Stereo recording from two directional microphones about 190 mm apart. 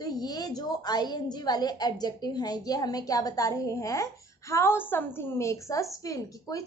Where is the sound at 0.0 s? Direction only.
20° left (ahead or behind).